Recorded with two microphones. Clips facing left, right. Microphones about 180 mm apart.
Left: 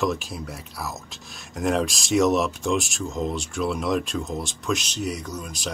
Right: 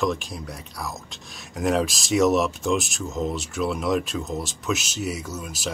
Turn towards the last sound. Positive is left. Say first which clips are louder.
# right 1 dB
turn(degrees=-5)  # may be behind; listen again after turning